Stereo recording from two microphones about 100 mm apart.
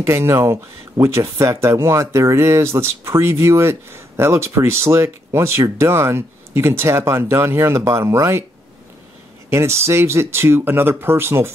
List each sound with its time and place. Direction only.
0.0 s speech: 25° right (ahead or behind)
9.5 s speech: 25° right (ahead or behind)